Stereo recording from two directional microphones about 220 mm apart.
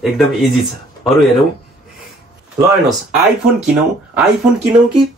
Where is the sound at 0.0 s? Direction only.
Centre (ahead or behind).